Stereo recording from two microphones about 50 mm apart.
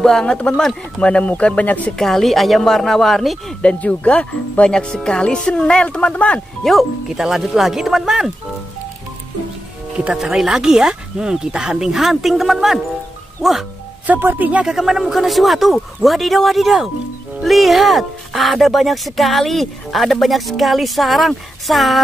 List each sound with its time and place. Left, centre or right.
0.0 s speech: centre; by 2.0 s left
2.0 s speech: centre
3.6 s speech: left
6.6 s speech: centre
7.1 s speech: centre
10.1 s speech: centre
14.1 s speech: right
14.7 s speech: centre